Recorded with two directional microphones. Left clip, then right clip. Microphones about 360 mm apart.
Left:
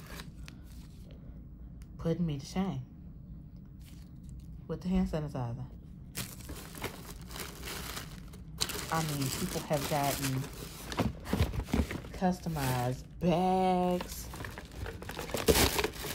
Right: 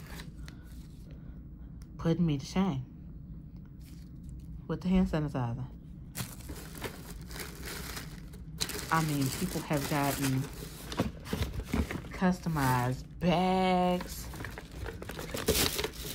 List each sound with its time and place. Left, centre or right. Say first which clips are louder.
2.0 s a woman's voice: right 3 dB; centre
4.6 s a woman's voice: right 3 dB; centre
6.1 s crushing: even; centre
7.3 s a sound: even; centre
8.5 s speech: right 3 dB; centre
10.8 s vehicle: left 1 dB; centre
11.4 s a sound: left 1 dB; centre
15.8 s wood: left 2 dB; centre